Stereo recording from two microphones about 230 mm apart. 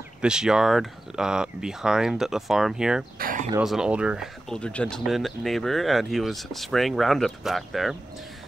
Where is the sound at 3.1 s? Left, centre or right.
Right.